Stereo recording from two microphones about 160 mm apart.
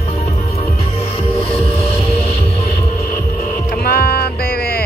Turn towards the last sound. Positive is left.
turn(degrees=75)  # may be behind; listen again after turning